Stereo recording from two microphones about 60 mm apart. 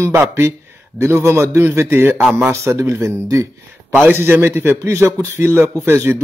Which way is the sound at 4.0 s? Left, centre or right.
Right.